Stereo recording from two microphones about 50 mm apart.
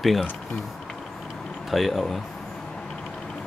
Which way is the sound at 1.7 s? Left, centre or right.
Centre.